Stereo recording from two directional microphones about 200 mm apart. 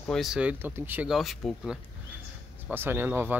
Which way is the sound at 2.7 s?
10° right (ahead or behind).